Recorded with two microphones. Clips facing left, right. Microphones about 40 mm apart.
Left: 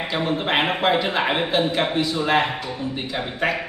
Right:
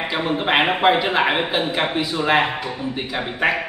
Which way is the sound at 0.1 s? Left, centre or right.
Centre.